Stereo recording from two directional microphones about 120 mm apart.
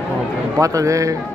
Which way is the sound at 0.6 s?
25° right (ahead or behind).